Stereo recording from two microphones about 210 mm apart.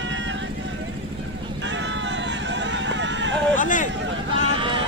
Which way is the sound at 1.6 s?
60° right (ahead or behind).